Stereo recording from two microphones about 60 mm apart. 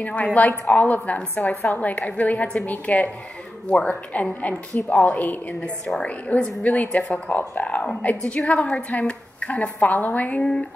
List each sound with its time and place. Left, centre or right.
0.0 s a woman's voice: left
4.1 s a woman's voice: left
10.4 s speech: centre